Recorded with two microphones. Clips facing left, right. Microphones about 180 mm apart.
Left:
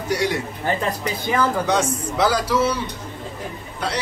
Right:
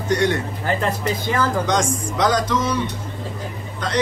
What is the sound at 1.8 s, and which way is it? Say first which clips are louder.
Speech: right 1 dB; 10° right (ahead or behind).